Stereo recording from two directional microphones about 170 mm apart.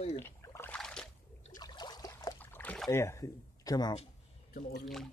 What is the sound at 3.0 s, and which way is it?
Speech, 20° left (ahead or behind).